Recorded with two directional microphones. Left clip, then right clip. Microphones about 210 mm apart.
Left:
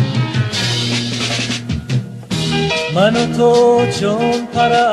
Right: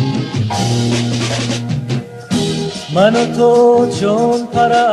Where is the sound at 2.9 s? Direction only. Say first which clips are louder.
Right 5 dB; 30° right (ahead or behind).